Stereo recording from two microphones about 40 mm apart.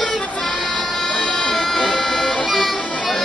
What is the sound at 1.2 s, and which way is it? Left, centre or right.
Music, centre.